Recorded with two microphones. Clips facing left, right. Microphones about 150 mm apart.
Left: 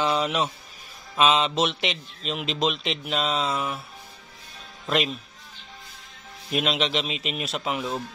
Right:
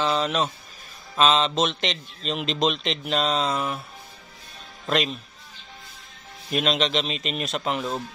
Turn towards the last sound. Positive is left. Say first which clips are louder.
# right 2 dB
turn(degrees=5)  # may be behind; listen again after turning